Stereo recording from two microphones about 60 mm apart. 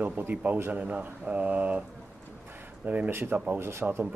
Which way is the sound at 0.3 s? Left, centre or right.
Right.